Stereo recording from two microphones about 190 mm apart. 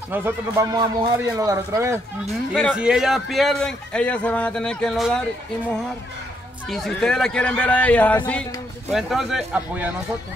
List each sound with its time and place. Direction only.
0.1 s speech: 15° right (ahead or behind)
2.5 s a man's voice: centre (ahead or behind)
6.7 s a man's voice: centre (ahead or behind)